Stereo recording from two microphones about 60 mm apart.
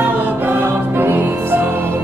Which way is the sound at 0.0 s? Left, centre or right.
Right.